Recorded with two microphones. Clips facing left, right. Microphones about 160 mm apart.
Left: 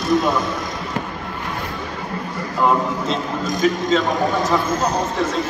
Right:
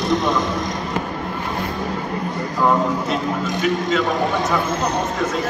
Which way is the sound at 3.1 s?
35° left (ahead or behind).